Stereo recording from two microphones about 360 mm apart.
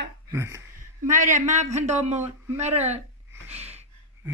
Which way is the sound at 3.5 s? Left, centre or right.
Centre.